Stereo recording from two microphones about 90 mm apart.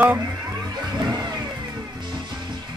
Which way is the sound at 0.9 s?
55° right (ahead or behind).